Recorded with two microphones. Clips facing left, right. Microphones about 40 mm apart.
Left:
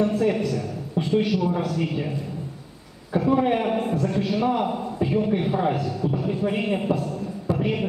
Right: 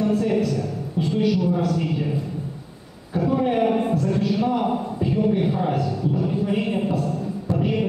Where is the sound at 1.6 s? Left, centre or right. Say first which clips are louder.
Right 2 dB; centre.